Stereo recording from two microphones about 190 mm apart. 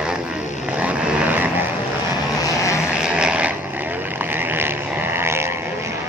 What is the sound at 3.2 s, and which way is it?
Vehicle, 5° right (ahead or behind).